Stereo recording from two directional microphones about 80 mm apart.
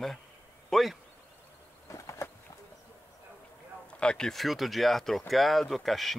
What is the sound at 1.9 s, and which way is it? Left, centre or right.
Bird, left.